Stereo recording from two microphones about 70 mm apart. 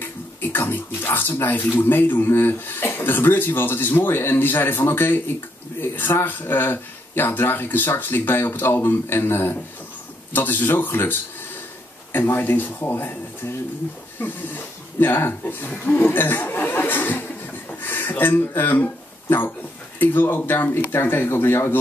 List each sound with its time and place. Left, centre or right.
0.0 s speech: left
14.2 s speech: left
17.6 s a sound: left
20.0 s speech: left